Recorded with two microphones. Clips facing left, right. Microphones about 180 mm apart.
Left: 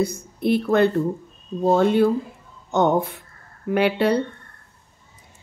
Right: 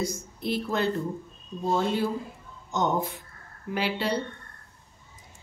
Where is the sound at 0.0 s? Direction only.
60° left (ahead or behind).